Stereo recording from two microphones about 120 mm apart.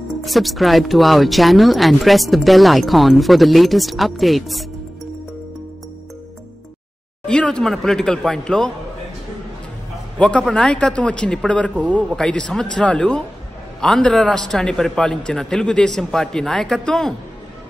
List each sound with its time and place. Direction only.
0.2 s speech: centre (ahead or behind)
7.2 s speech: 10° left (ahead or behind)
10.1 s a man's voice: 5° left (ahead or behind)